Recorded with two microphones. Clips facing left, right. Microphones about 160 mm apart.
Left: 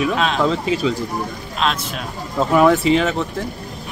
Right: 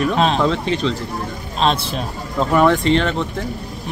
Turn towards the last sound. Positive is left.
turn(degrees=5)  # may be behind; listen again after turning